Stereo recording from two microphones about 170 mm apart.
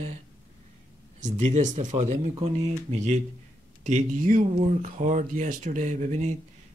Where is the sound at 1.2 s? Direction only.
45° right (ahead or behind).